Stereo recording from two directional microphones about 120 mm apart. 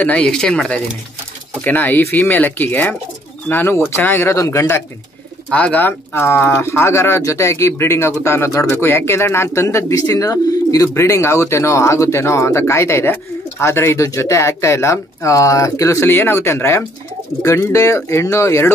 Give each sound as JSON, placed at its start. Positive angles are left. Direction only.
{"t": 0.0, "sound": "speech", "side_deg": 10}
{"t": 5.5, "sound": "speech", "side_deg": 10}